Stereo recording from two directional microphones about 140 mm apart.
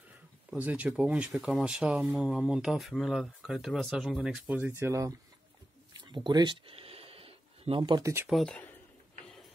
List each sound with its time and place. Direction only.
0.6 s speech: 10° right (ahead or behind)
5.9 s a sound: 35° right (ahead or behind)
8.0 s speech: 15° right (ahead or behind)
8.3 s speech: 5° left (ahead or behind)